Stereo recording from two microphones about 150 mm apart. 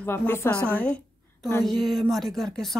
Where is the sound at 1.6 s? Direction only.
Centre (ahead or behind).